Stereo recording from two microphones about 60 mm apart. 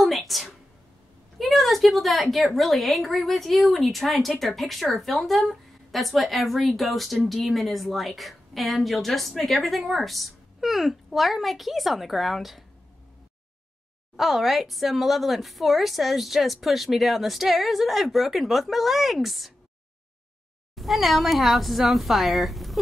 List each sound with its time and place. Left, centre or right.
0.0 s a sound: centre
1.4 s speech: centre
14.1 s speech: centre
20.7 s speech: centre